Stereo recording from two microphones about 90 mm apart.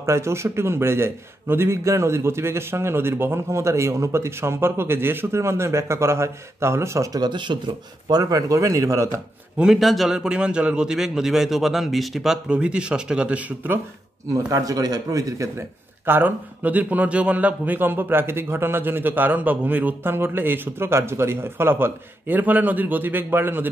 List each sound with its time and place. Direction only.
0.0 s a man's voice: 30° right (ahead or behind)
9.6 s a man's voice: 5° right (ahead or behind)
14.3 s a man's voice: 40° right (ahead or behind)
16.1 s a man's voice: 20° right (ahead or behind)